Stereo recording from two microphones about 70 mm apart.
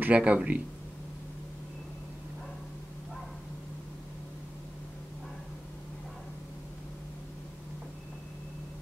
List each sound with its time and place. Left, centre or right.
0.0 s speech: centre